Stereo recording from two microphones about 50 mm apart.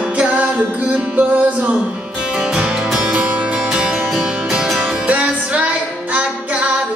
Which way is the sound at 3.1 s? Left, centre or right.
Right.